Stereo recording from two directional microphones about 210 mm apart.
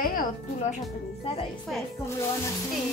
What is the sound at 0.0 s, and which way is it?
Speech, 40° left (ahead or behind).